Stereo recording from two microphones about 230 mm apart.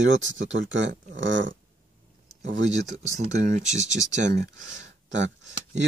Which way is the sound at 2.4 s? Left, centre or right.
Right.